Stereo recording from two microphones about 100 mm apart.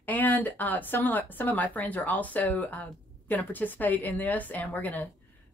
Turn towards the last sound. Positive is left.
turn(degrees=15)  # may be behind; listen again after turning